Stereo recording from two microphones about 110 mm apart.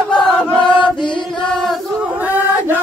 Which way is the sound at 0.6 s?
45° left (ahead or behind).